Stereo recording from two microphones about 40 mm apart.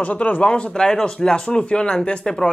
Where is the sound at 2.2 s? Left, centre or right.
Centre.